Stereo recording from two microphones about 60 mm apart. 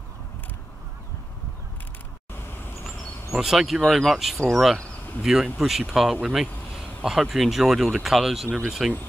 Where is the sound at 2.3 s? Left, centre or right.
Left.